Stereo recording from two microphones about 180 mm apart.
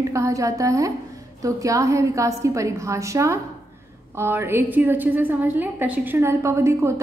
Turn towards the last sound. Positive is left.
turn(degrees=-15)  # may be behind; listen again after turning